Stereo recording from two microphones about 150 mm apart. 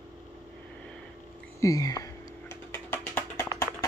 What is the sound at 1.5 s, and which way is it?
Speech, 25° left (ahead or behind).